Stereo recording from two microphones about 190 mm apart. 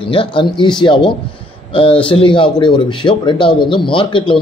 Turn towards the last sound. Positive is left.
turn(degrees=25)  # may be behind; listen again after turning